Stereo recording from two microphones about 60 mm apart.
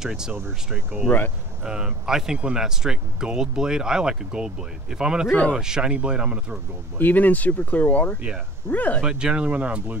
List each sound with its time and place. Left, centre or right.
0.0 s speech: centre
1.6 s speech: centre
7.0 s speech: left
9.0 s speech: centre